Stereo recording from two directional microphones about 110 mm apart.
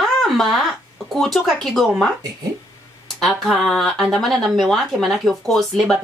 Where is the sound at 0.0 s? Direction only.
Centre (ahead or behind).